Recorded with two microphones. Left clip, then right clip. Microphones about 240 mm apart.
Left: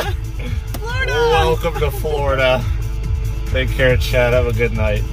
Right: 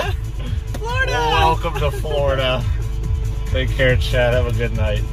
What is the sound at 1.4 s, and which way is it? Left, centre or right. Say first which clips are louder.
Speech: even; left.